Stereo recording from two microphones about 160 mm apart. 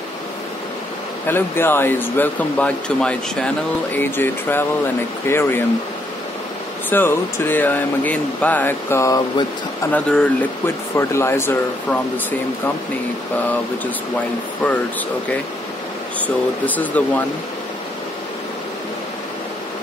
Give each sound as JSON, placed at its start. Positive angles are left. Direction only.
{"t": 1.2, "sound": "speech", "side_deg": 15}
{"t": 6.9, "sound": "speech", "side_deg": 15}
{"t": 9.8, "sound": "speech", "side_deg": 10}
{"t": 16.6, "sound": "speech", "side_deg": 10}